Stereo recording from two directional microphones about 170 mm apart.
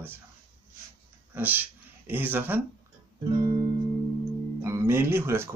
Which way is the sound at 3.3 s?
25° right (ahead or behind).